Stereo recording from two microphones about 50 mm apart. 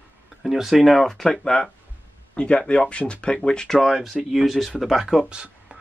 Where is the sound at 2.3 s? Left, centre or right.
Left.